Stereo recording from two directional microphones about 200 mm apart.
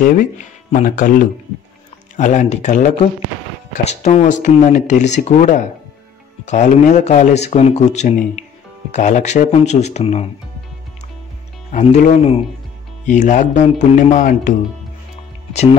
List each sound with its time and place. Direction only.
0.0 s speech: 40° left (ahead or behind)
11.7 s speech: 35° left (ahead or behind)